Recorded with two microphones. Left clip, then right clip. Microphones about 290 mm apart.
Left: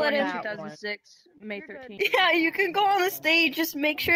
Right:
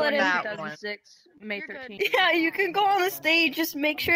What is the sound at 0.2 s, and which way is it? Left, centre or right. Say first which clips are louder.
Speech: right 5 dB; right.